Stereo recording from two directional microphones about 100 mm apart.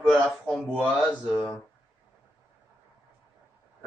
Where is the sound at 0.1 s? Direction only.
Centre (ahead or behind).